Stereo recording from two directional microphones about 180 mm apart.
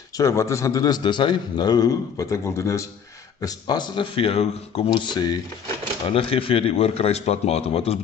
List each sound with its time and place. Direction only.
0.2 s a man's voice: 15° left (ahead or behind); by 8.0 s 35° left (ahead or behind)